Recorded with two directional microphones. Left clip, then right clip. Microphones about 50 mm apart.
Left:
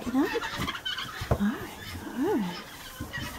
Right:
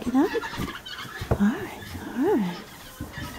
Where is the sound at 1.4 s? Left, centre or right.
Right.